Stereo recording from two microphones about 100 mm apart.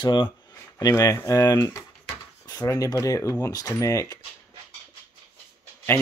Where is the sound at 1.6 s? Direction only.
20° left (ahead or behind).